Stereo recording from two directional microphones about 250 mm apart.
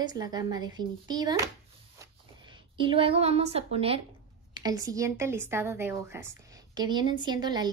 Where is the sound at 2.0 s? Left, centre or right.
Centre.